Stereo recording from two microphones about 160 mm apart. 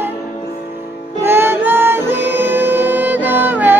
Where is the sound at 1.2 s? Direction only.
15° right (ahead or behind).